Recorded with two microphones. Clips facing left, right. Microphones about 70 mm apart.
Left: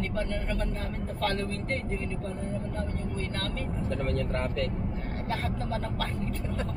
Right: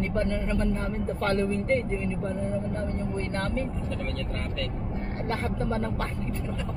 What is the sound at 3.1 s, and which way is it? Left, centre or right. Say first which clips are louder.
Speech: right 4 dB; right.